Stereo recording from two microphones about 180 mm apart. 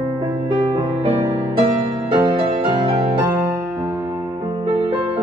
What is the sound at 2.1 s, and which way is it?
Music, 25° right (ahead or behind).